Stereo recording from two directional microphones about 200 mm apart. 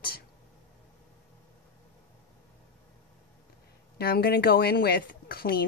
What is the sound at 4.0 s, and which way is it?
Speech, 50° left (ahead or behind).